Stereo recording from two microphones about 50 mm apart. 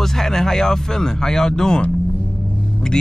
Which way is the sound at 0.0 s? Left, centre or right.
Centre.